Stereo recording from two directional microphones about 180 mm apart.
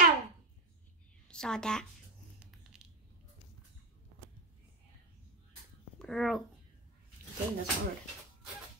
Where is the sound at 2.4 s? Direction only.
5° right (ahead or behind).